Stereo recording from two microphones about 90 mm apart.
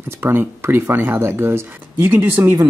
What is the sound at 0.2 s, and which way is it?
Speech, 25° right (ahead or behind).